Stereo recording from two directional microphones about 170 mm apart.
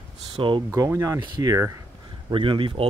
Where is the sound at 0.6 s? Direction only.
15° right (ahead or behind).